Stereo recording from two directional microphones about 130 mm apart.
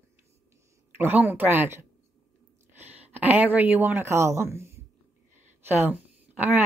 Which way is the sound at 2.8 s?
15° right (ahead or behind).